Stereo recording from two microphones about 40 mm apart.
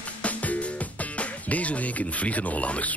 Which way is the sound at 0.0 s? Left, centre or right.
Left.